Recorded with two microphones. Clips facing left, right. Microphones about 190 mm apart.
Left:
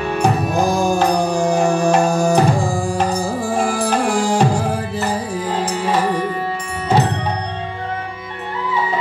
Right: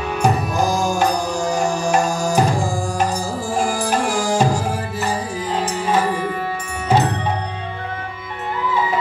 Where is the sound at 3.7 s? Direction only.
60° left (ahead or behind).